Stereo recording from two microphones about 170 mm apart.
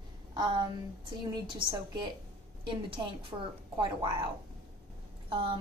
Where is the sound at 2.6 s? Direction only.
30° right (ahead or behind).